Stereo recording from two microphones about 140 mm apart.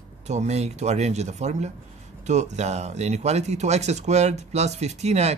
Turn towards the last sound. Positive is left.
turn(degrees=-50)  # may be behind; listen again after turning